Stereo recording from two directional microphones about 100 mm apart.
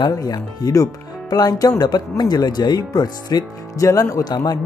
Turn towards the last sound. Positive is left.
turn(degrees=40)  # may be behind; listen again after turning